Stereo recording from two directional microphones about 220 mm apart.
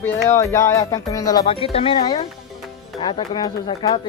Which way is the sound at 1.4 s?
25° left (ahead or behind).